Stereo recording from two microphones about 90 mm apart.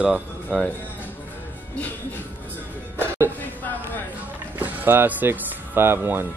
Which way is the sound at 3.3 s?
20° left (ahead or behind).